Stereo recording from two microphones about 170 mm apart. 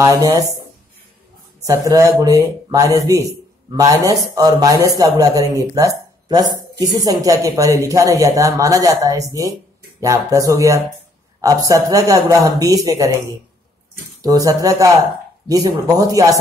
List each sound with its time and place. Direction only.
0.0 s speech: 20° right (ahead or behind)
1.6 s speech: 20° right (ahead or behind)
14.2 s speech: 20° right (ahead or behind)